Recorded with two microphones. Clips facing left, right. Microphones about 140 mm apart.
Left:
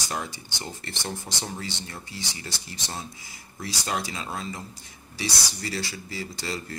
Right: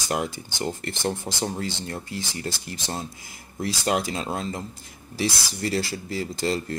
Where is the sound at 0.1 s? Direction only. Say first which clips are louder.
Right 8 dB; 55° right (ahead or behind).